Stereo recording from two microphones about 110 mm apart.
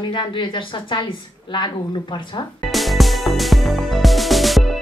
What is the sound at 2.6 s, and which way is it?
Music, centre (ahead or behind).